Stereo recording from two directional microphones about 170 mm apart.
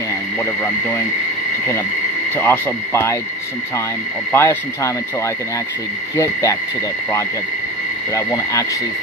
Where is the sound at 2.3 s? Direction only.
10° left (ahead or behind).